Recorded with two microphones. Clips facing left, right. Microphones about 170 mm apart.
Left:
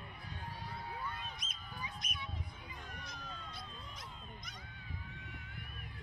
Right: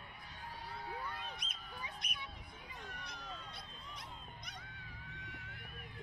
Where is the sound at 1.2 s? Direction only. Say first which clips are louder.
Even; 65° right (ahead or behind).